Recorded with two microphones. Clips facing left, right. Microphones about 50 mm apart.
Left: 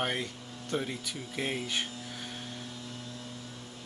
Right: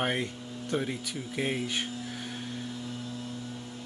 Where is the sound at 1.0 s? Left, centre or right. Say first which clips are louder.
Right 3 dB; centre.